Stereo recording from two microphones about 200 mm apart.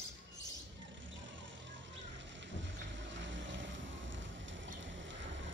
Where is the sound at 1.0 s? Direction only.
70° right (ahead or behind).